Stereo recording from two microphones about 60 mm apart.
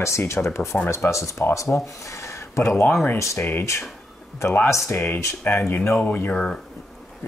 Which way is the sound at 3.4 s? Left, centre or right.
Left.